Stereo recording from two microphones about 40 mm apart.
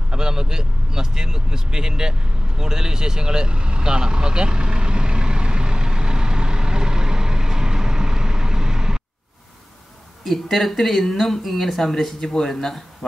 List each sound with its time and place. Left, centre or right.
0.1 s vehicle: centre
10.2 s speech: centre